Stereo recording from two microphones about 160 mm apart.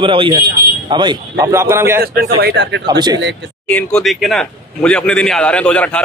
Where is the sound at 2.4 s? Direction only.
90° right.